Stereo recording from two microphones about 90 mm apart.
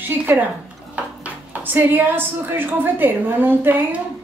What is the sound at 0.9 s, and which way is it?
Dishes, 15° right (ahead or behind).